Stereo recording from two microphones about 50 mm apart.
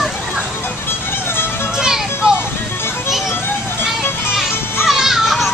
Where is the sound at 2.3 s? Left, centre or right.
Left.